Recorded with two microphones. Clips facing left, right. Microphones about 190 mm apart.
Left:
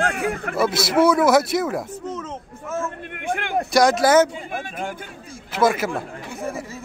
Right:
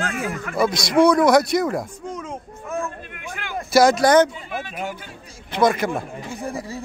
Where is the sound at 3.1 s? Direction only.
55° left (ahead or behind).